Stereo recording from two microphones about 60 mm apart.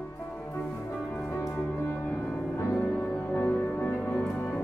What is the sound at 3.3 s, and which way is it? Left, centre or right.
Music, left.